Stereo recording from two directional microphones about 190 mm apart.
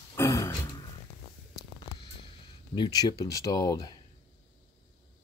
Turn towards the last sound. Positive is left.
turn(degrees=20)  # may be behind; listen again after turning